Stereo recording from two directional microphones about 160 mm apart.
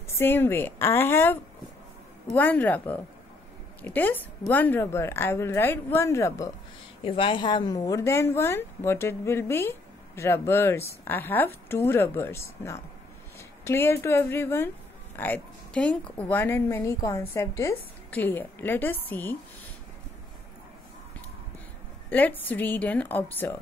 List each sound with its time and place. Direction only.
0.1 s a woman's voice: 15° left (ahead or behind)
7.0 s a woman's voice: 35° left (ahead or behind); by 19.3 s 10° left (ahead or behind)
22.1 s a woman's voice: 10° left (ahead or behind)